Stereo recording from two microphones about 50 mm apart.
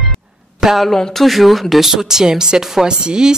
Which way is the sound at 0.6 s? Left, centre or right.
Centre.